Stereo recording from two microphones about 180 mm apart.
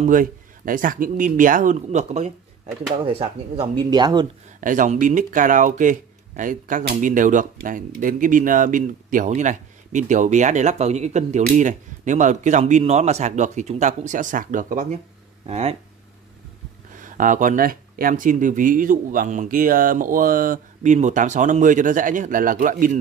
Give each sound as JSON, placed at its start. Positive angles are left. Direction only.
{"t": 0.0, "sound": "speech", "side_deg": -50}
{"t": 4.6, "sound": "speech", "side_deg": -45}
{"t": 15.4, "sound": "speech", "side_deg": -35}
{"t": 16.9, "sound": "speech", "side_deg": -45}